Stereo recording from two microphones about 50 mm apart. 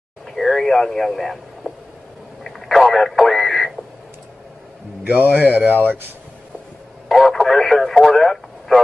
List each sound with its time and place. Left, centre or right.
0.3 s speech: centre
2.4 s radio: centre
5.0 s a man's voice: right
7.1 s speech: centre